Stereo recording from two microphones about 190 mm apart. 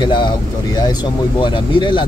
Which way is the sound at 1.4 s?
25° left (ahead or behind).